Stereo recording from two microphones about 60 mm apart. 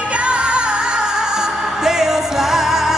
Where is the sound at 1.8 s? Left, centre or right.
Centre.